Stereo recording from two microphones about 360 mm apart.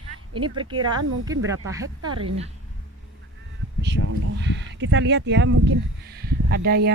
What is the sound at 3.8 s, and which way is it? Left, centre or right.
Speech, right.